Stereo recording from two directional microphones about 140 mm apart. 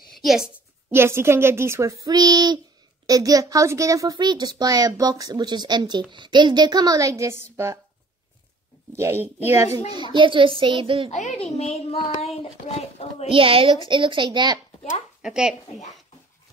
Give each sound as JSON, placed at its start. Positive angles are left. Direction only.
{"t": 0.2, "sound": "a child's voice", "side_deg": 0}
{"t": 0.8, "sound": "a child's voice", "side_deg": -15}
{"t": 8.9, "sound": "a woman's voice", "side_deg": -20}
{"t": 9.9, "sound": "a child's voice", "side_deg": -35}
{"t": 11.1, "sound": "speech", "side_deg": 55}
{"t": 13.3, "sound": "a child's voice", "side_deg": -40}
{"t": 15.2, "sound": "a child's voice", "side_deg": -5}